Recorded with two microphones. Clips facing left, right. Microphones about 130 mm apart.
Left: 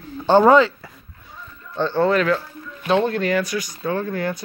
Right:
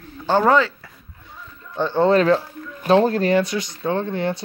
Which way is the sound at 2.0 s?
30° right (ahead or behind).